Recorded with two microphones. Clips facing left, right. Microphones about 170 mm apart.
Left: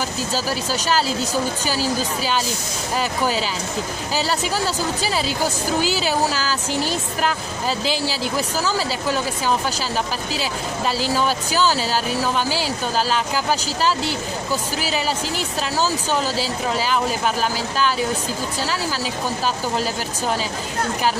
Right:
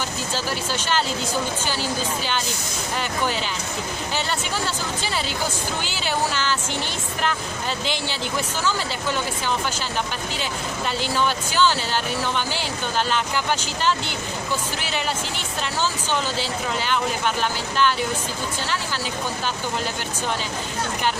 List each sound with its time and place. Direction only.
4.3 s speech: 40° left (ahead or behind)
10.4 s speech: 35° left (ahead or behind)